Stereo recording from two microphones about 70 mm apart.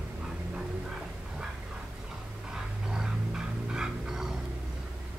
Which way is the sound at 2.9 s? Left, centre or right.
Centre.